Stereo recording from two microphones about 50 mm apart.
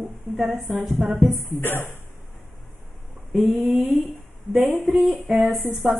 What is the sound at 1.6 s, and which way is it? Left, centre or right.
Speech, left.